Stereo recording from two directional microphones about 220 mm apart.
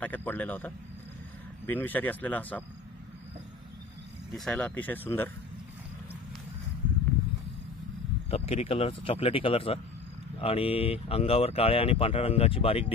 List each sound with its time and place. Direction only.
0.0 s speech: 10° left (ahead or behind)
4.3 s speech: 5° left (ahead or behind)
8.3 s speech: 25° left (ahead or behind)